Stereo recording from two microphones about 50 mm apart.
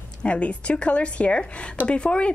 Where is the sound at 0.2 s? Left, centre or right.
Left.